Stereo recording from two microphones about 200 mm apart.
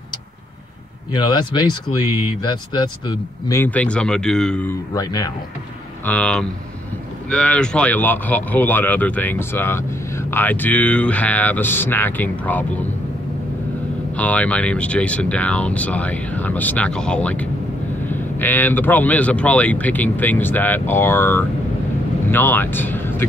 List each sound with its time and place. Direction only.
1.1 s speech: 20° left (ahead or behind); by 4.7 s 5° left (ahead or behind)
4.9 s speech: 20° left (ahead or behind)
6.0 s speech: 5° left (ahead or behind)
14.1 s speech: 5° left (ahead or behind)